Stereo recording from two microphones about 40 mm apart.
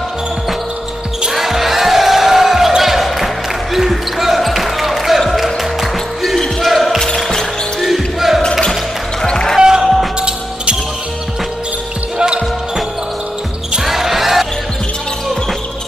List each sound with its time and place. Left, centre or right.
1.3 s basketball bounce: centre
5.3 s music: centre
6.6 s basketball bounce: centre
7.0 s music: centre
7.8 s basketball bounce: centre
9.2 s a sound: centre
9.6 s basketball bounce: centre
12.2 s basketball bounce: right
13.8 s basketball bounce: centre